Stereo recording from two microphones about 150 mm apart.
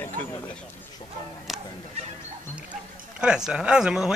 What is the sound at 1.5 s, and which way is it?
Fowl, centre (ahead or behind).